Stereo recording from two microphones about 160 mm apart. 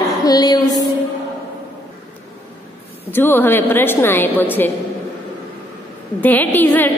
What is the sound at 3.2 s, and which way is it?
A woman's voice, 15° left (ahead or behind).